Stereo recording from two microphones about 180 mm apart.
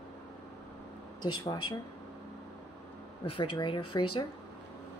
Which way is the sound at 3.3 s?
30° left (ahead or behind).